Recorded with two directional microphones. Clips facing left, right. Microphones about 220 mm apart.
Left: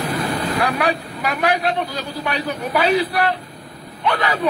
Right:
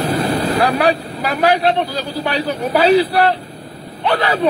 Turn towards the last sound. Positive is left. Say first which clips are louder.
# right 4 dB
turn(degrees=-35)  # may be behind; listen again after turning